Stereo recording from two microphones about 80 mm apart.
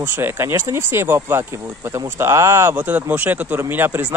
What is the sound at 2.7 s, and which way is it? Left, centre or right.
Speech, right.